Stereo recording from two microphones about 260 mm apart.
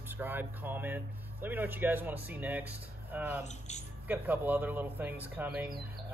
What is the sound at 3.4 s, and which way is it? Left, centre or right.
Speech, left.